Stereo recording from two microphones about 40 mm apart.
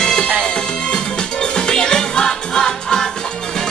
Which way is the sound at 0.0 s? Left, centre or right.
Centre.